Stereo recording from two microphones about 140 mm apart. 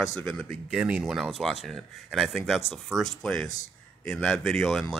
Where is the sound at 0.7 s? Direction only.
5° right (ahead or behind).